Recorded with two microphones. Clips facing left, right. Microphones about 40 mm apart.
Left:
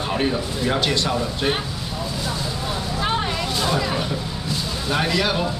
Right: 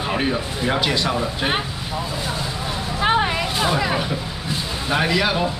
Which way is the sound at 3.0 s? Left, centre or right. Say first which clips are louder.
Right 6 dB; right.